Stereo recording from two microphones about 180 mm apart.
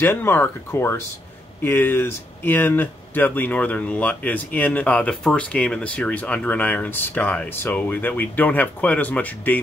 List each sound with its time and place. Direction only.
0.0 s speech: 10° left (ahead or behind)